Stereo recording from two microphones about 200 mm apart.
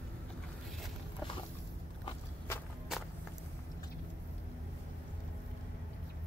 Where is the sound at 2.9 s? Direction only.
Centre (ahead or behind).